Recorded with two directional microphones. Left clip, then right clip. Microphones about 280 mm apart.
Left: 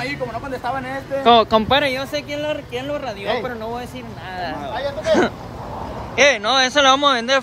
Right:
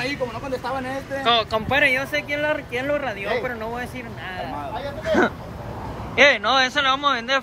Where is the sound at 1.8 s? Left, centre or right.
Centre.